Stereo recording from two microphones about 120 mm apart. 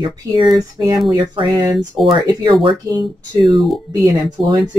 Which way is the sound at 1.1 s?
40° right (ahead or behind).